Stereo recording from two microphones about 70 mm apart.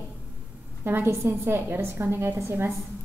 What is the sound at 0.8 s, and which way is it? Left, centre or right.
A woman's voice, right.